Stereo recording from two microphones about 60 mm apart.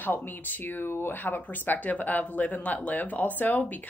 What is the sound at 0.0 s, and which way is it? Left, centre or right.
A woman's voice, left.